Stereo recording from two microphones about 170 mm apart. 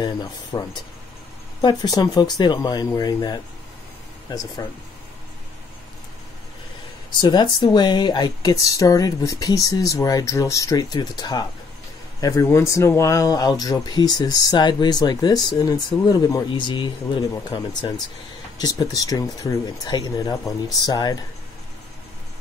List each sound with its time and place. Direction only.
0.0 s speech: 25° left (ahead or behind)
7.2 s speech: 25° left (ahead or behind)